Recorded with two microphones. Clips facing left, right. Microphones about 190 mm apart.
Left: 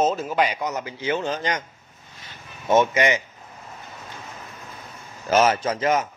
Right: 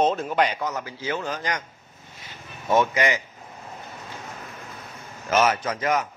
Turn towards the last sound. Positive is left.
turn(degrees=25)  # may be behind; listen again after turning